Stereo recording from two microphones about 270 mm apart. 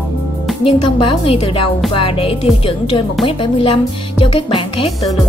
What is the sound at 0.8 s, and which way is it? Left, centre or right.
Speech, centre.